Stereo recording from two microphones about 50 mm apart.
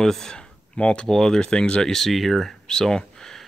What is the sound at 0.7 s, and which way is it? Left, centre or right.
Speech, left.